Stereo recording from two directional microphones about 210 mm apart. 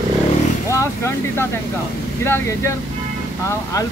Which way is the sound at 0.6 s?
15° left (ahead or behind).